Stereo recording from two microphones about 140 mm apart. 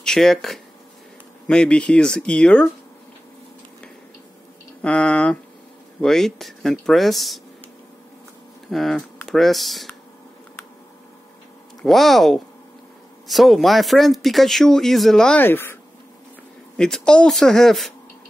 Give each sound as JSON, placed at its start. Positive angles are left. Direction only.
{"t": 0.0, "sound": "speech", "side_deg": 5}
{"t": 4.8, "sound": "speech", "side_deg": 10}
{"t": 8.6, "sound": "speech", "side_deg": 0}
{"t": 11.8, "sound": "speech", "side_deg": 0}